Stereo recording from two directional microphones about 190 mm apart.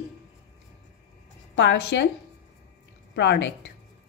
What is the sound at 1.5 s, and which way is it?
Speech, 65° left (ahead or behind).